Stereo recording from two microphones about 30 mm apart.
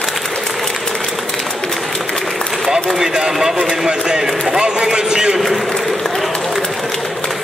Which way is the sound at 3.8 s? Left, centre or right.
Right.